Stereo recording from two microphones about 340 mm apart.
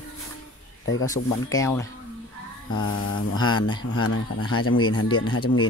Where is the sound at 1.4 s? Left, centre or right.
Centre.